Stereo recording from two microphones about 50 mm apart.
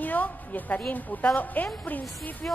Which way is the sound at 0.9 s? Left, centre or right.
Left.